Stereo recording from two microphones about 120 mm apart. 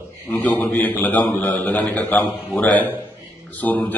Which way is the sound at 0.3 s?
15° left (ahead or behind).